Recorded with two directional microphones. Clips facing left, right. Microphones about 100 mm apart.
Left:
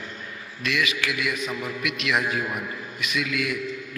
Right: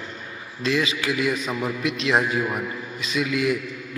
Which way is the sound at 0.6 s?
30° right (ahead or behind).